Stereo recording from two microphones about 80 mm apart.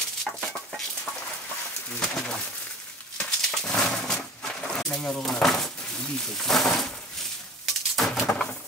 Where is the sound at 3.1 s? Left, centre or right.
Centre.